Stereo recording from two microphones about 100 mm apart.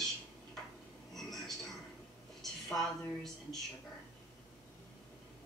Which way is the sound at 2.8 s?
5° left (ahead or behind).